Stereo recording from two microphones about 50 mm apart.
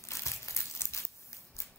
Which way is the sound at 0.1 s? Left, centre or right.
Left.